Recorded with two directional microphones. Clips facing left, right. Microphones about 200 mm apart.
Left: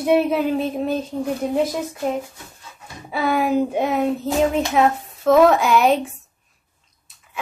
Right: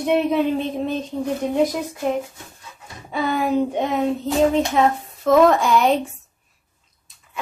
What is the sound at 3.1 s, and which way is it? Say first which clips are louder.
Speech: left 1 dB; 5° left (ahead or behind).